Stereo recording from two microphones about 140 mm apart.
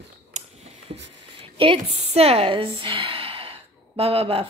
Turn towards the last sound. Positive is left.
turn(degrees=-45)  # may be behind; listen again after turning